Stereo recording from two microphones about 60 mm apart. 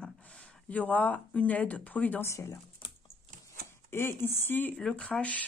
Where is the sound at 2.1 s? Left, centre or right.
Left.